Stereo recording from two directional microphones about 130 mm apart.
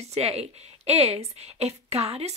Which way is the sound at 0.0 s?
50° right (ahead or behind).